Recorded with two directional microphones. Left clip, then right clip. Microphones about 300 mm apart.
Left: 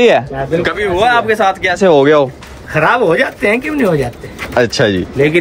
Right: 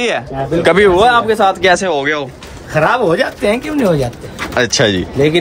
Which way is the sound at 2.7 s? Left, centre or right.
Centre.